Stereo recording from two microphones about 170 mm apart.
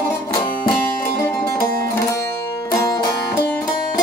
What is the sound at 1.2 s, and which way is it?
Music, 15° left (ahead or behind).